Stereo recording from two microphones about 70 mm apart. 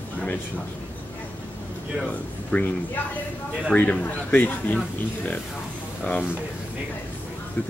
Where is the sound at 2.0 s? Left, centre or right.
Centre.